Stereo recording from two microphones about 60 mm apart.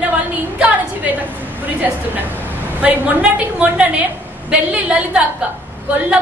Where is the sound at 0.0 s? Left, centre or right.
Right.